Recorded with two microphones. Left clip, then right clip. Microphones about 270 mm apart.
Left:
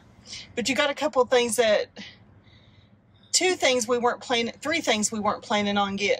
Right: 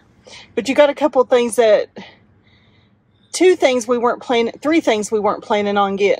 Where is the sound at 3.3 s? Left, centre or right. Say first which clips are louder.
Right 9 dB; centre.